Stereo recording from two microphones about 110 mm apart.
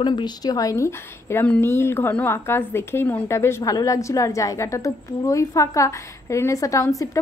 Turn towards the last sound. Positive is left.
turn(degrees=25)  # may be behind; listen again after turning